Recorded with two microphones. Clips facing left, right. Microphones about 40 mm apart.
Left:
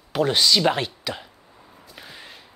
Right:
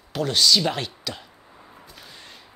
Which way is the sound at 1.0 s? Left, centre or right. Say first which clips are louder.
Left 3 dB; centre.